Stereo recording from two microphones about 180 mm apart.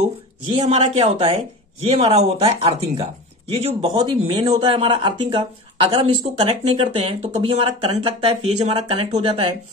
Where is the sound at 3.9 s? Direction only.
25° right (ahead or behind).